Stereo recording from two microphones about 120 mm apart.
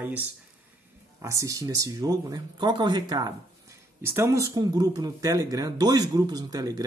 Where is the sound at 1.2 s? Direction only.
25° right (ahead or behind).